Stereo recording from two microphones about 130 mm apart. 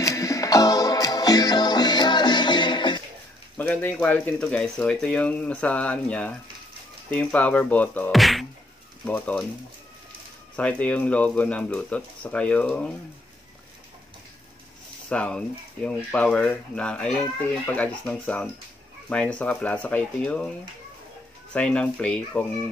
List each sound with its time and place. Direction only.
0.0 s music: 25° left (ahead or behind)
3.5 s speech: 15° left (ahead or behind)
8.1 s music: centre (ahead or behind)
9.0 s speech: 10° left (ahead or behind)
10.5 s speech: 10° left (ahead or behind)
15.0 s speech: 10° left (ahead or behind)
21.5 s speech: 10° left (ahead or behind)